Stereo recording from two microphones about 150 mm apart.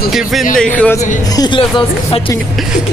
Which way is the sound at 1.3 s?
25° left (ahead or behind).